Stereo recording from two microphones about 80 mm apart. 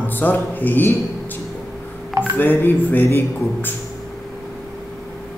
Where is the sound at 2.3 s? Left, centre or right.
Left.